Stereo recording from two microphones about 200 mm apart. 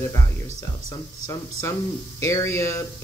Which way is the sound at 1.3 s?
15° left (ahead or behind).